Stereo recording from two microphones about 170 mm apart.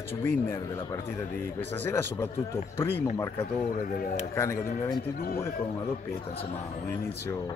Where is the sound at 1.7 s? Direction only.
10° left (ahead or behind).